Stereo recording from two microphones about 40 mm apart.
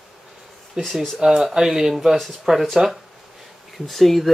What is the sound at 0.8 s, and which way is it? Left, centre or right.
Speech, centre.